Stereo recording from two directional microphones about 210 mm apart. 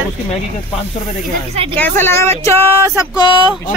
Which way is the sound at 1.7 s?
10° left (ahead or behind).